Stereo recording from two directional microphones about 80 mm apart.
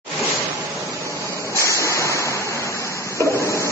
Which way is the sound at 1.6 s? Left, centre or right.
Left.